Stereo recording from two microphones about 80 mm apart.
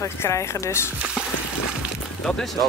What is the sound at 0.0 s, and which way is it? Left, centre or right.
Speech, left.